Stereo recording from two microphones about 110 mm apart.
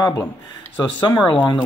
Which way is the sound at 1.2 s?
45° left (ahead or behind).